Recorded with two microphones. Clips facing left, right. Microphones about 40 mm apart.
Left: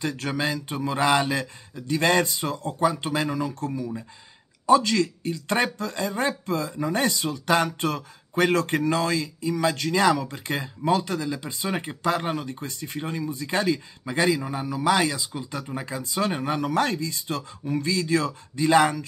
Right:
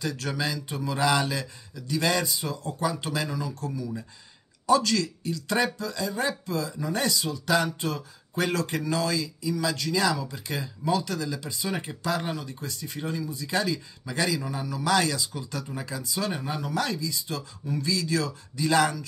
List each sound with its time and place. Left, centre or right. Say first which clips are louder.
0.0 s speech: left 3 dB; left
11.1 s speech: left 3 dB; left